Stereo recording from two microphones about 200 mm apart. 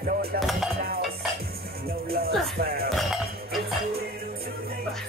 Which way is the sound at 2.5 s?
50° right (ahead or behind).